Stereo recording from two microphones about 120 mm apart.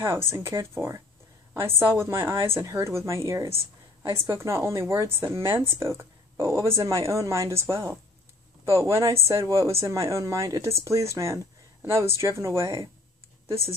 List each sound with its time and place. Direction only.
0.3 s a woman's voice: 20° right (ahead or behind)